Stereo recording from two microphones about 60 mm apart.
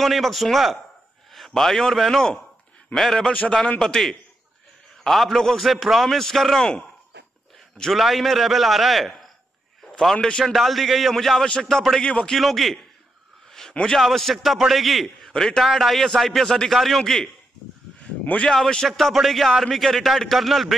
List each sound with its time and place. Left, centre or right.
0.0 s a man's voice: centre
7.9 s speech: centre
10.4 s a man's voice: centre
12.3 s speech: centre
13.5 s a sound: centre
13.9 s speech: centre
18.2 s a man's voice: left
18.5 s speech: centre